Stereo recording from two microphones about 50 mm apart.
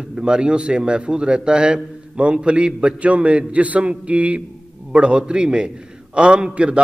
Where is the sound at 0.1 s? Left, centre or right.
Centre.